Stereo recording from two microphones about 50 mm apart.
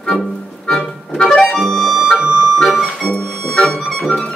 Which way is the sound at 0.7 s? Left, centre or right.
Centre.